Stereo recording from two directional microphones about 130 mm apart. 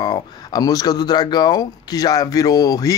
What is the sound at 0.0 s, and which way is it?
Speech, 30° left (ahead or behind).